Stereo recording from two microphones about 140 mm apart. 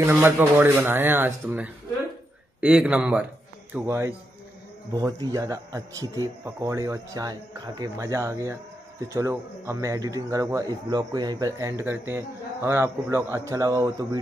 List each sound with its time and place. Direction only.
0.0 s speech: 15° right (ahead or behind)